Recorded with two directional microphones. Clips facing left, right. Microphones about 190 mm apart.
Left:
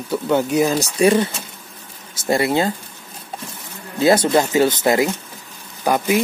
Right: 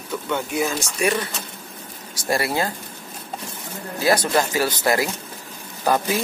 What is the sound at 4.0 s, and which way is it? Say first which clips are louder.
Speech: left 5 dB; 25° left (ahead or behind).